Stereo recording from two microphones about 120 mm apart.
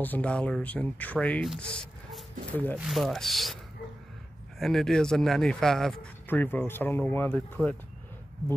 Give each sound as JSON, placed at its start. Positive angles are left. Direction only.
{"t": 0.0, "sound": "speech", "side_deg": 10}
{"t": 2.9, "sound": "speech", "side_deg": 0}
{"t": 4.6, "sound": "speech", "side_deg": 0}
{"t": 6.2, "sound": "speech", "side_deg": 15}